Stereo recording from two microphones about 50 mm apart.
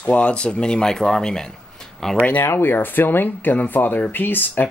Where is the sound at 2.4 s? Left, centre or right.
Left.